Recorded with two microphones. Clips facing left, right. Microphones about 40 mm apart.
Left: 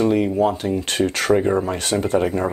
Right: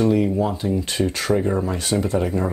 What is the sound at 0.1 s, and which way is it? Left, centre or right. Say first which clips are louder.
Speech: left 2 dB; left.